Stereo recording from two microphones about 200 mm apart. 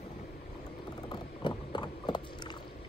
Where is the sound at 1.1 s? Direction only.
20° left (ahead or behind).